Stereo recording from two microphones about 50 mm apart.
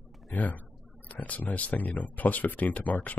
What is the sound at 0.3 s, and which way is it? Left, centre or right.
Speech, left.